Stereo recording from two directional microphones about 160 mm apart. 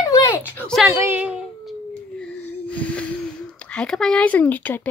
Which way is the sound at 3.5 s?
5° left (ahead or behind).